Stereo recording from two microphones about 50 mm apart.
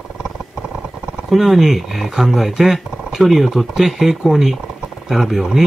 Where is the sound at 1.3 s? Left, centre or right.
Centre.